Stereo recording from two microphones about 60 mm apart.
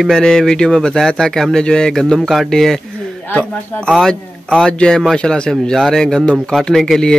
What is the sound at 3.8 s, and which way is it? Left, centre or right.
Speech, centre.